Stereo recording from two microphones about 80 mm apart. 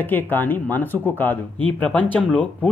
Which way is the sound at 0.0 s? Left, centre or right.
Left.